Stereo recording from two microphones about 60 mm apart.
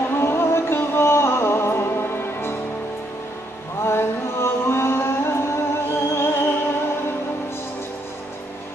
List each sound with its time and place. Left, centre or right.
0.2 s music: left
3.8 s music: left